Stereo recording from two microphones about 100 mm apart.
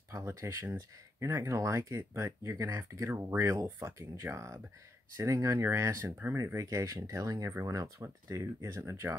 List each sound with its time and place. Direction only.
0.1 s speech: 30° right (ahead or behind)